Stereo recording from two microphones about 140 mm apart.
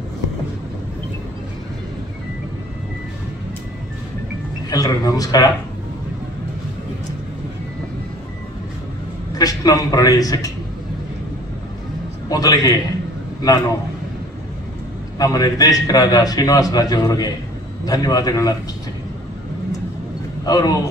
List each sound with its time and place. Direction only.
4.6 s a man's voice: 25° left (ahead or behind)
9.4 s a man's voice: 25° left (ahead or behind)
12.3 s a man's voice: 25° left (ahead or behind)
15.1 s a man's voice: 25° left (ahead or behind)
20.4 s a man's voice: 25° left (ahead or behind)